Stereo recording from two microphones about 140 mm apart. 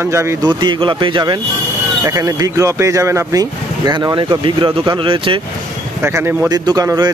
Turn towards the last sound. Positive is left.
turn(degrees=-25)  # may be behind; listen again after turning